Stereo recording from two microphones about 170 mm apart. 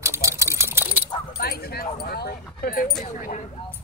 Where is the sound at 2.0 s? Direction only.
65° left (ahead or behind).